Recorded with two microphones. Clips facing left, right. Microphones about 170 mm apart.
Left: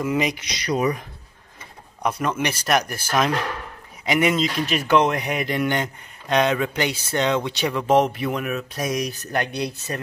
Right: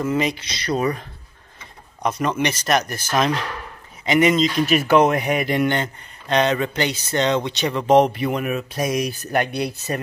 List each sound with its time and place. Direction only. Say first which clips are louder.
0.0 s speech: right 1 dB; 15° left (ahead or behind)
2.0 s speech: right 2 dB; 5° left (ahead or behind)
4.6 s speech: right 3 dB; 5° right (ahead or behind)
5.8 s speech: right 1 dB; 10° left (ahead or behind); by 9.9 s 5° right (ahead or behind)